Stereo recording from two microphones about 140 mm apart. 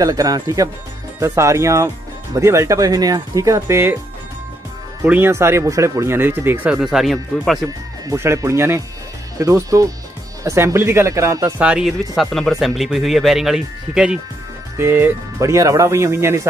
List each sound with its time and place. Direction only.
0.0 s speech: 25° right (ahead or behind)
5.0 s speech: 15° right (ahead or behind)
6.8 s speech: centre (ahead or behind)
8.1 s speech: 20° right (ahead or behind)
14.8 s speech: 15° right (ahead or behind)